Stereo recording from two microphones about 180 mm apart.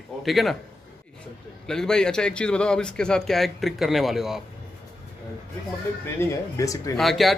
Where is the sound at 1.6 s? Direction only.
5° left (ahead or behind).